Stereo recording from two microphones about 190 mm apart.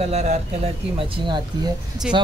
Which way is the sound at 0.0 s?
35° right (ahead or behind).